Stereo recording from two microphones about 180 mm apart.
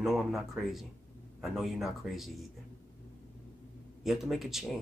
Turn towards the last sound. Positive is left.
turn(degrees=0)  # may be behind; listen again after turning